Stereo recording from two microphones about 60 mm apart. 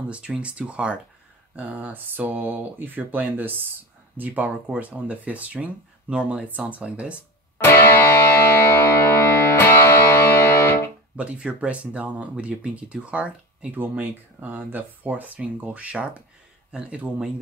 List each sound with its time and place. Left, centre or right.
0.1 s speech: centre
7.5 s music: left
11.1 s speech: centre
13.7 s speech: right